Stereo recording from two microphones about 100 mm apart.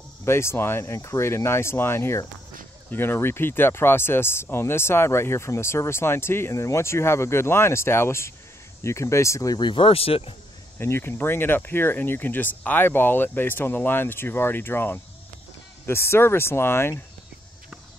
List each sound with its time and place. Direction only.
0.2 s speech: 25° left (ahead or behind)
9.6 s speech: 55° left (ahead or behind)
10.8 s speech: 25° left (ahead or behind)